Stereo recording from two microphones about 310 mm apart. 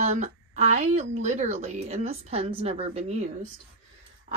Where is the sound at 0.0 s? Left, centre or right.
Right.